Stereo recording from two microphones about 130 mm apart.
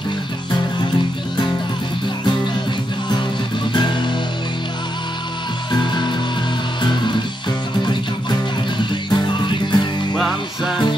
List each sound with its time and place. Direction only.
3.7 s music: 35° left (ahead or behind)
5.7 s music: 35° left (ahead or behind)
9.1 s music: 35° left (ahead or behind)